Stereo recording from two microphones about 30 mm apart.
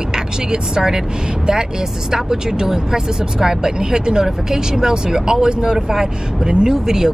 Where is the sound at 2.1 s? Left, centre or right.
Centre.